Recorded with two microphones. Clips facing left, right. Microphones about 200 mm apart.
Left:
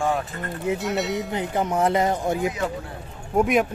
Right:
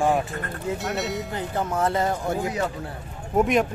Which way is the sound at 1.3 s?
15° left (ahead or behind).